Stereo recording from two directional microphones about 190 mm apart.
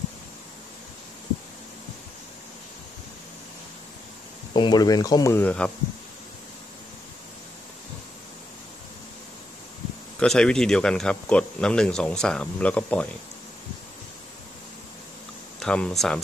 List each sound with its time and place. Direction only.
4.6 s speech: 20° left (ahead or behind)
10.1 s speech: 5° left (ahead or behind)
15.6 s speech: 5° left (ahead or behind)